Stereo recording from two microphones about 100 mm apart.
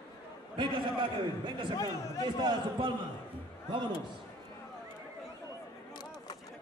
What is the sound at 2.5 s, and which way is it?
Speech, 50° right (ahead or behind).